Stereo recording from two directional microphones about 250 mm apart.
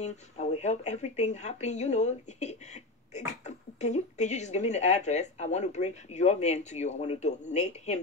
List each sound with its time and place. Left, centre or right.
0.0 s a woman's voice: left